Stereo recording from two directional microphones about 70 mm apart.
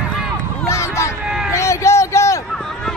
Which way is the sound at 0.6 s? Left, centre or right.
Left.